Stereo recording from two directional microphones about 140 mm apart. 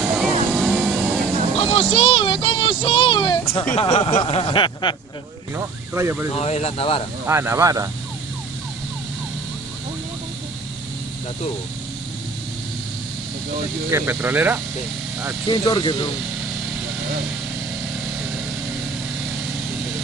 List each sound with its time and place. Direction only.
0.0 s vehicle: 5° right (ahead or behind)
1.6 s speech: 40° left (ahead or behind)
5.6 s speech: 20° right (ahead or behind)
6.3 s speech: 50° left (ahead or behind)
7.2 s speech: 20° right (ahead or behind)
13.8 s speech: 15° right (ahead or behind)
15.4 s speech: 35° left (ahead or behind)